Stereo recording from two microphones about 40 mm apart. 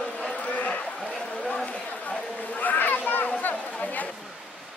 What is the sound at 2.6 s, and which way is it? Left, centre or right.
Children playing, left.